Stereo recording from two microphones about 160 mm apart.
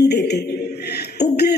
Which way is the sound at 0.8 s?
90° left.